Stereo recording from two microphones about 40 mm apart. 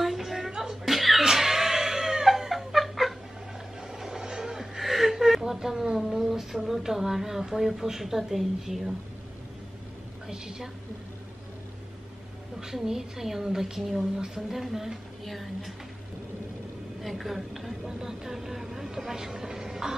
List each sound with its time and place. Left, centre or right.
0.0 s music: centre
0.8 s laughter: centre
1.2 s cat: centre
3.8 s gasp: centre
6.0 s speech: centre
10.3 s speech: centre
12.5 s a woman's voice: centre
17.0 s a woman's voice: centre
17.8 s speech: centre